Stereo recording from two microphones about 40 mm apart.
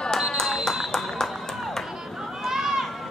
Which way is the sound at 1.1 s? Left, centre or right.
Centre.